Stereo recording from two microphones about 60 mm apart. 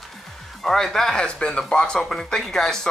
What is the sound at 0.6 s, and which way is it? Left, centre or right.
Speech, centre.